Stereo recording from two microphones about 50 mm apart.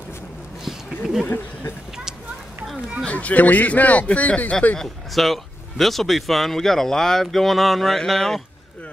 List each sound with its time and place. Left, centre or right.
0.7 s a sound: centre
1.2 s speech: left
3.1 s a man's voice: left
4.7 s speech: centre